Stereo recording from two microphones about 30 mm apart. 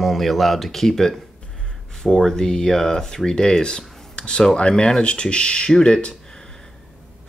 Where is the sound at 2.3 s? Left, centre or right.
Centre.